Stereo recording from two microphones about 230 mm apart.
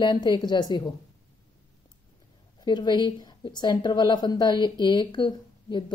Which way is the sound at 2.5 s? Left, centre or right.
Centre.